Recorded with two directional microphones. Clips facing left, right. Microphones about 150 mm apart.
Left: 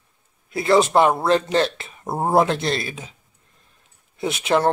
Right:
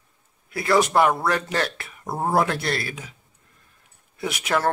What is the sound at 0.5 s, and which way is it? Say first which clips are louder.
Speech: left 3 dB; 25° left (ahead or behind).